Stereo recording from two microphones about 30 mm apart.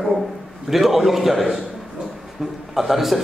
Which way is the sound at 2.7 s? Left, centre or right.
Centre.